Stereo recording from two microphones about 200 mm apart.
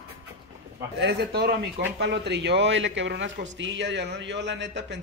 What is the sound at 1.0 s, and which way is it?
A man's voice, 55° right (ahead or behind).